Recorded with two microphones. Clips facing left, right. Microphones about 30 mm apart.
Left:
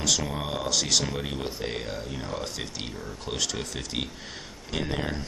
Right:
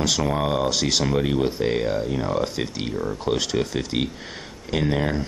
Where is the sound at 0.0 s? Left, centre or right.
Centre.